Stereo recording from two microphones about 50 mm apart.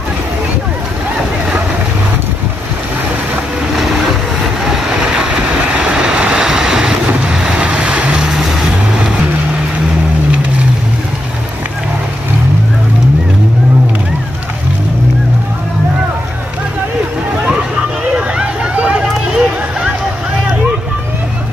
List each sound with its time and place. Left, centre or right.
3.7 s vehicle: centre
6.4 s waves: centre
7.1 s vehicle: centre
8.3 s vehicle: centre
18.1 s a sound: right